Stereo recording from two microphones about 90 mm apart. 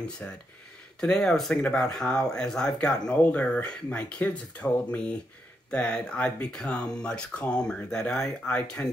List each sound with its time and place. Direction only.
0.2 s speech: 20° left (ahead or behind)
1.0 s speech: 10° left (ahead or behind)